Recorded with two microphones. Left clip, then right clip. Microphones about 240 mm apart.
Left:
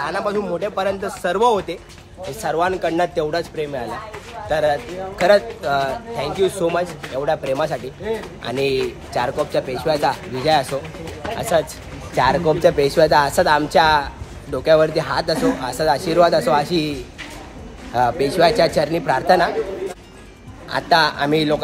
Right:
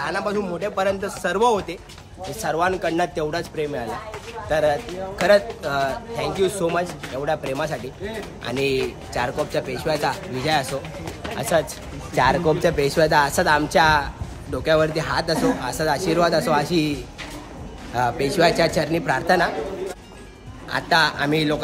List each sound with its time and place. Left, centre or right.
0.0 s speech: centre
17.9 s speech: centre
20.7 s speech: centre